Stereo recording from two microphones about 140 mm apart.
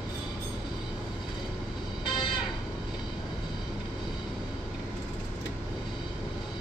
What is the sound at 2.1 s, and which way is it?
Music, 35° left (ahead or behind).